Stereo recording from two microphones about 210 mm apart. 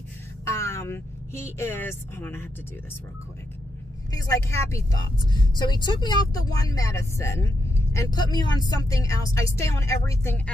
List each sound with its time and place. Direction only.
0.5 s speech: 15° left (ahead or behind)
4.1 s speech: 15° left (ahead or behind)